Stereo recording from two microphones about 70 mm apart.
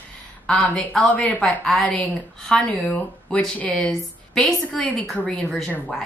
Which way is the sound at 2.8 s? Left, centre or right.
Centre.